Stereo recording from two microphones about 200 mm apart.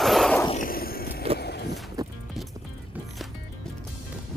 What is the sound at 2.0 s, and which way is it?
Music, 20° right (ahead or behind).